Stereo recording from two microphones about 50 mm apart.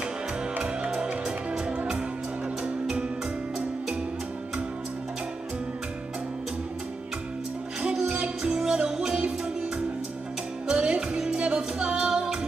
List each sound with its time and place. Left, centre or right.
0.8 s music: centre
8.1 s music: centre
10.7 s music: centre